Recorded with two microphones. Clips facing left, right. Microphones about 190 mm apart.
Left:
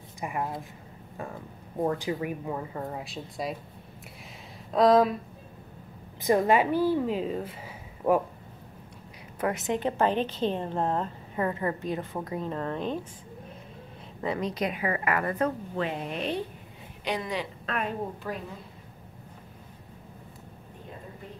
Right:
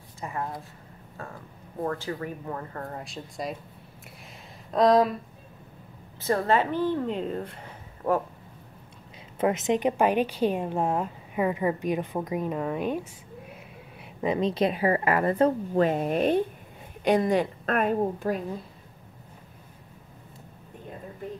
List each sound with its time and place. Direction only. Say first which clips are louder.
0.2 s a woman's voice: left 1 dB; 15° left (ahead or behind)
1.8 s a woman's voice: left 2 dB; 15° left (ahead or behind)
4.7 s speech: even; centre (ahead or behind)
6.2 s a woman's voice: left 2 dB; 15° left (ahead or behind)
9.4 s a woman's voice: right 4 dB; 20° right (ahead or behind)
14.2 s a woman's voice: right 5 dB; 20° right (ahead or behind); by 18.3 s 50° right (ahead or behind)